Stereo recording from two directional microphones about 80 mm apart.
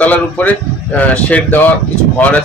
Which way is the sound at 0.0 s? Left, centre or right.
Centre.